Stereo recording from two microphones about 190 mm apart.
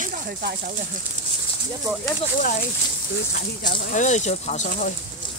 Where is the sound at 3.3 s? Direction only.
55° left (ahead or behind).